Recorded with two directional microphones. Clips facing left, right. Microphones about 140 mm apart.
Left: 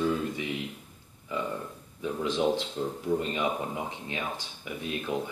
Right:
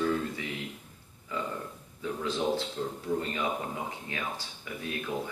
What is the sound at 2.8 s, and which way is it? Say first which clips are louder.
Speech: left 3 dB; 20° left (ahead or behind).